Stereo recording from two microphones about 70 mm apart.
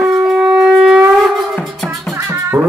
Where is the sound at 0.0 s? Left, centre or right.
Centre.